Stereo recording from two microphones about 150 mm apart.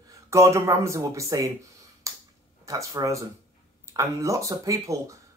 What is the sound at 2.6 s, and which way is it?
Speech, 20° right (ahead or behind).